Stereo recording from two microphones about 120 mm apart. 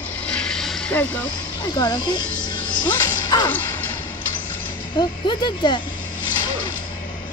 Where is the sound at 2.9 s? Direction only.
35° left (ahead or behind).